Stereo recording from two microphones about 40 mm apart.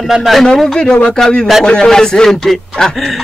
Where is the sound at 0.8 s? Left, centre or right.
Left.